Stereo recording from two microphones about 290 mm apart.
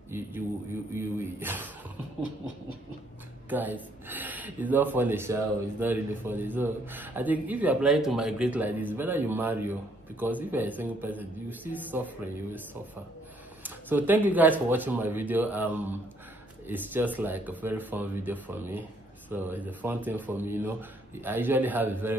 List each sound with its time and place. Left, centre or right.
0.9 s speech: centre
3.4 s speech: centre
13.6 s speech: centre